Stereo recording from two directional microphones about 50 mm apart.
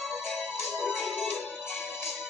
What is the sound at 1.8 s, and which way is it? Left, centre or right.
Music, left.